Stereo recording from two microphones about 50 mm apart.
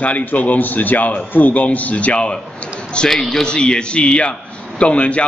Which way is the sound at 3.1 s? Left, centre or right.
Centre.